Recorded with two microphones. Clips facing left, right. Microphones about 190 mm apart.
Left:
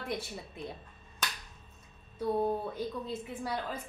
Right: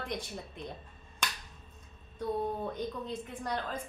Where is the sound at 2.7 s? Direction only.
5° left (ahead or behind).